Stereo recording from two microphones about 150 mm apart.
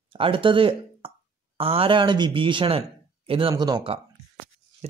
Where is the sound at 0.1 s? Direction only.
35° right (ahead or behind).